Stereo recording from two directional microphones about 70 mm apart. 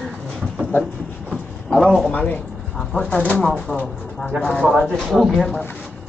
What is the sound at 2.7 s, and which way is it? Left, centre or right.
Bird, centre.